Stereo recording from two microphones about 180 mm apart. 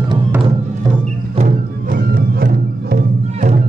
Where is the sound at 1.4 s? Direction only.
55° right (ahead or behind).